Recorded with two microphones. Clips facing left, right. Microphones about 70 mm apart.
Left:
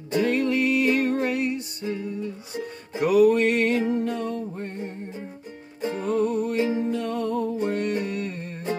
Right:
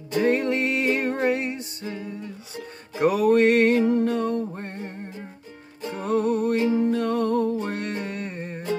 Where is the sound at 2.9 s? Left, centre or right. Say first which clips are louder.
Left 1 dB; right.